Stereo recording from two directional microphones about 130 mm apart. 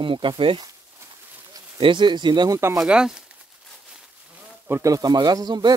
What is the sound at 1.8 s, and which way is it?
Speech, 35° right (ahead or behind).